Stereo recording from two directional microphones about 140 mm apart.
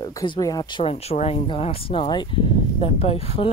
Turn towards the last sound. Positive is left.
turn(degrees=45)  # may be behind; listen again after turning